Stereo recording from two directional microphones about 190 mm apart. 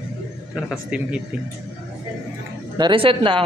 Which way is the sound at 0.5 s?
Centre (ahead or behind).